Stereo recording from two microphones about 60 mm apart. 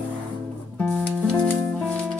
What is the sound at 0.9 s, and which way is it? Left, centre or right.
Music, centre.